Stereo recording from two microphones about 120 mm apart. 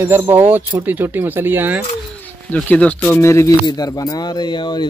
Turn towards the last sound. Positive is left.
turn(degrees=40)  # may be behind; listen again after turning